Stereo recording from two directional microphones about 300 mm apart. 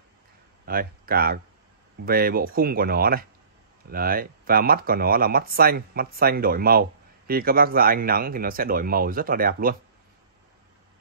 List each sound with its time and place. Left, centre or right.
0.7 s speech: right